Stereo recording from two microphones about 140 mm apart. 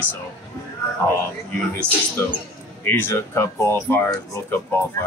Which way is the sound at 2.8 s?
15° left (ahead or behind).